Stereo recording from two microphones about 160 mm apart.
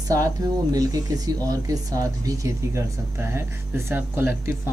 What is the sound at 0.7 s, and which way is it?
Speech, 25° right (ahead or behind).